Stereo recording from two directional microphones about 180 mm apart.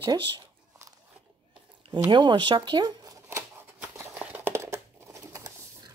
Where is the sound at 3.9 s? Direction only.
10° right (ahead or behind).